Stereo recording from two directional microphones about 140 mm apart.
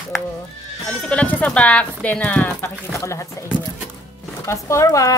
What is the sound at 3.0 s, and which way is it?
Speech, 20° left (ahead or behind).